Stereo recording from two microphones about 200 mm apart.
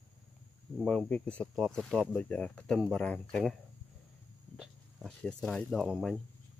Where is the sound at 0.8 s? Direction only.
5° left (ahead or behind).